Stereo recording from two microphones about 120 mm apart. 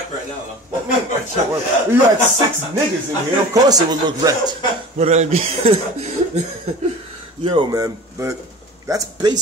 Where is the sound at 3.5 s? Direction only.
30° right (ahead or behind).